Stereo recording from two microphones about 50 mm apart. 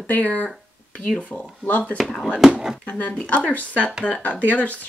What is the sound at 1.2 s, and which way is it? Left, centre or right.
Speech, left.